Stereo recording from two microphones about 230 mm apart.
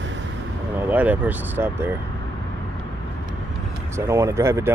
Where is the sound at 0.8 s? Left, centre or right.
Centre.